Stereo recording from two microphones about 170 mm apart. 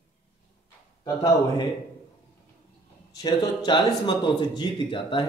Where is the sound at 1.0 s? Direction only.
25° left (ahead or behind).